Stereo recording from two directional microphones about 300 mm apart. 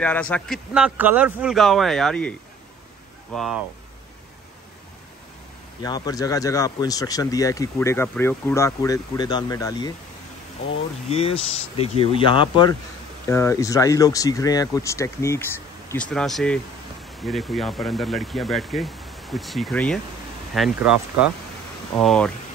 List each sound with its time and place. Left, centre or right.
0.0 s speech: centre
3.3 s speech: centre
5.8 s speech: centre
11.1 s speech: centre